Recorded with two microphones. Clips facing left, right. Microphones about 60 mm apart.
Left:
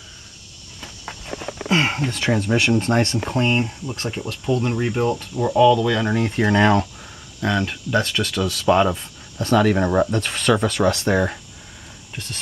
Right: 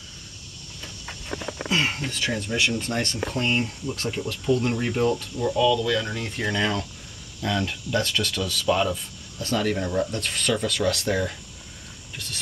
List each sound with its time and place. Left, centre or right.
1.7 s speech: left
2.1 s speech: left; by 5.2 s centre
5.3 s speech: left
6.5 s speech: left
7.4 s speech: left
8.5 s speech: left
9.4 s speech: left
10.7 s speech: left
12.2 s speech: left